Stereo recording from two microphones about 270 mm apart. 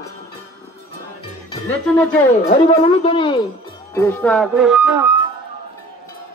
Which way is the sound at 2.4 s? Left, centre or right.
Left.